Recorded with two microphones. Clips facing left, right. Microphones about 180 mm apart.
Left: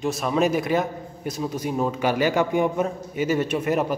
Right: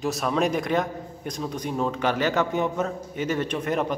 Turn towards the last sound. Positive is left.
turn(degrees=5)  # may be behind; listen again after turning